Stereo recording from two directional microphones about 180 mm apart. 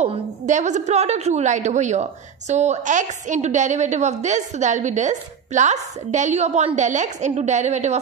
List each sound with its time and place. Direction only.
0.0 s a woman's voice: 40° right (ahead or behind)